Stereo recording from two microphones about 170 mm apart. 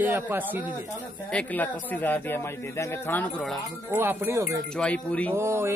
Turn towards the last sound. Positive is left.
turn(degrees=-15)  # may be behind; listen again after turning